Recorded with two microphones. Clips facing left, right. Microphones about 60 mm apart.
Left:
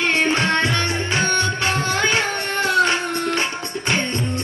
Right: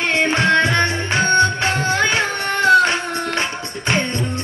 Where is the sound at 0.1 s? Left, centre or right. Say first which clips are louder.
Right 6 dB; right.